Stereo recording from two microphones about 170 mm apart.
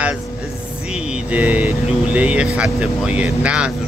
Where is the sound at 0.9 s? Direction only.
5° right (ahead or behind).